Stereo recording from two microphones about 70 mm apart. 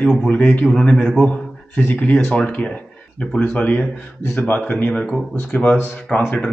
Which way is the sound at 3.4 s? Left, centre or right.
Left.